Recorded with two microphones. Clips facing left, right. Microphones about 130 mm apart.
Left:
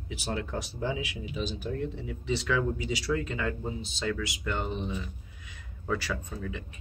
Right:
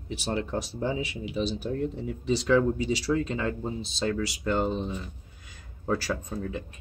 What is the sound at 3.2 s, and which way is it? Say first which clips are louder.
Speech: right 3 dB; 35° right (ahead or behind).